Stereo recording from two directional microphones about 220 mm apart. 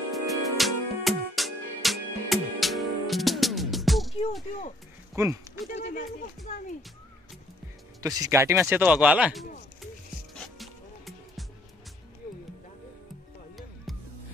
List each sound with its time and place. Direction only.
0.1 s music: centre (ahead or behind)
5.1 s speech: 10° right (ahead or behind)
5.7 s a sound: 35° left (ahead or behind)
8.0 s speech: 15° right (ahead or behind)
10.3 s music: centre (ahead or behind)
13.9 s music: centre (ahead or behind)